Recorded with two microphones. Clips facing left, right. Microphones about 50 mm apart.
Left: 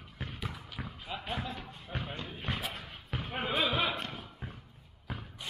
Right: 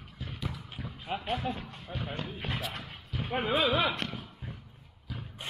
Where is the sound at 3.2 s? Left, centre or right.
Centre.